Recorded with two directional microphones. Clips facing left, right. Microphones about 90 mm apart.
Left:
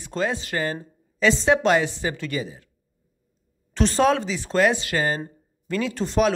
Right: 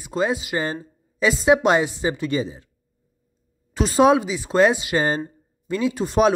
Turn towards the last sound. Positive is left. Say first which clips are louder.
# right 3 dB
turn(degrees=-15)  # may be behind; listen again after turning